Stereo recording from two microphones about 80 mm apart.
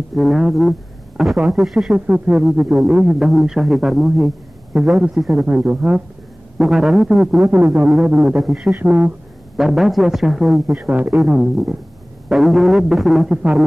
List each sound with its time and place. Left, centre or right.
0.1 s speech: centre
2.0 s speech: centre
3.2 s speech: centre
5.5 s speech: centre
6.6 s speech: centre
7.4 s a sound: right
8.4 s speech: centre
8.8 s a sound: right
9.6 s speech: centre
10.8 s speech: centre